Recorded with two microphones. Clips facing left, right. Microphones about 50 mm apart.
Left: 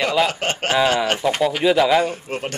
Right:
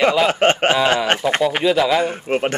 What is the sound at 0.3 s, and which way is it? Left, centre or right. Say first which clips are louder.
Chuckle: right 7 dB; right.